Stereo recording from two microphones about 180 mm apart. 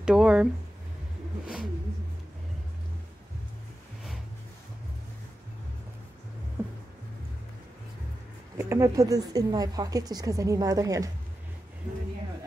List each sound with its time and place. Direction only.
0.0 s speech: 5° right (ahead or behind)
8.5 s a woman's voice: 15° right (ahead or behind)